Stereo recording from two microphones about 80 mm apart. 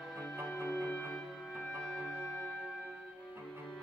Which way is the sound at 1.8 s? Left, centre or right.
Centre.